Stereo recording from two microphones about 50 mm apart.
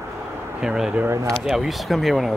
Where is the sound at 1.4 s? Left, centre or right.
Centre.